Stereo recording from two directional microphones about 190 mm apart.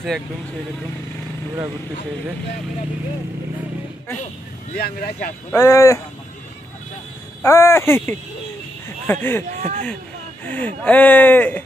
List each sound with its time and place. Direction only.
4.7 s speech: 55° left (ahead or behind)
5.5 s speech: 15° left (ahead or behind)
7.4 s speech: 15° left (ahead or behind)
9.6 s speech: 40° right (ahead or behind)
10.4 s speech: 10° left (ahead or behind)